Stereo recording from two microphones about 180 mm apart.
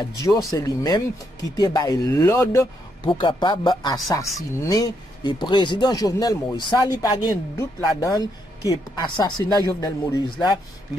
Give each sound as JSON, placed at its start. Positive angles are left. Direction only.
{"t": 0.2, "sound": "speech", "side_deg": 20}
{"t": 3.1, "sound": "speech", "side_deg": 25}